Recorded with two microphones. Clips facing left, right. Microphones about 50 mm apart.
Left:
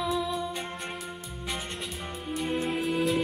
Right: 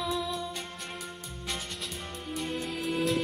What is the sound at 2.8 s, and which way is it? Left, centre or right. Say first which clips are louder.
Music: even; centre.